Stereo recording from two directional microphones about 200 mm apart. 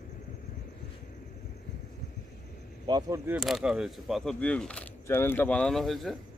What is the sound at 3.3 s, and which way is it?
Speech, centre (ahead or behind).